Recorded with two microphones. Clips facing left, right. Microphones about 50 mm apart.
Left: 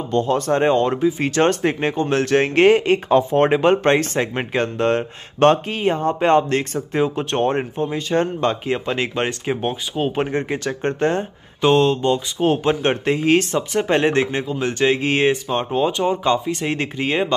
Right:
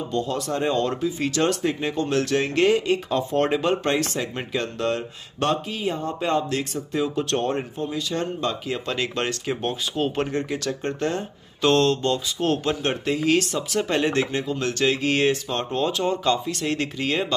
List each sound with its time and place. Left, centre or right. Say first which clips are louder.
0.1 s speech: left 9 dB; left; by 10.2 s centre
10.2 s speech: left 4 dB; left
11.6 s speech: left 4 dB; centre
12.6 s speech: left 6 dB; left
15.7 s speech: left 4 dB; centre